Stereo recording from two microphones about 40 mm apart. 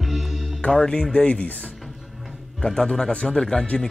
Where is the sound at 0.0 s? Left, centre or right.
Centre.